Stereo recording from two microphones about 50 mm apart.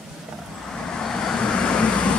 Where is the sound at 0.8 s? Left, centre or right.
Centre.